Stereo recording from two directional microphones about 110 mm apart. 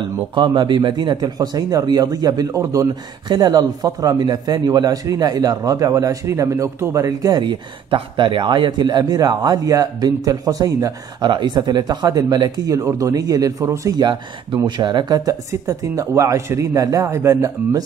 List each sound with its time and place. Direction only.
0.3 s a man's voice: 45° right (ahead or behind); by 14.0 s 30° right (ahead or behind)
14.0 s speech: 45° right (ahead or behind); by 17.5 s 25° right (ahead or behind)